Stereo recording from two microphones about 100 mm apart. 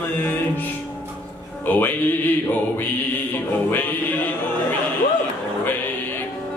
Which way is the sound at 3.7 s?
20° left (ahead or behind).